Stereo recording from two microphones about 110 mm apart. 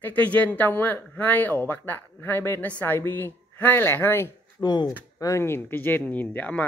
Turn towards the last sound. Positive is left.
turn(degrees=15)  # may be behind; listen again after turning